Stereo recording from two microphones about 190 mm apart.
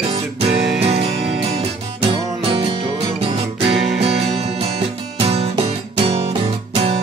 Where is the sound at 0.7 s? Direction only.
30° right (ahead or behind).